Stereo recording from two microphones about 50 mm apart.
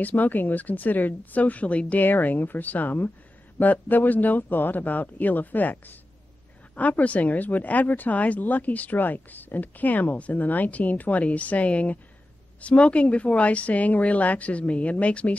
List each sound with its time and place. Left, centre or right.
0.0 s speech: left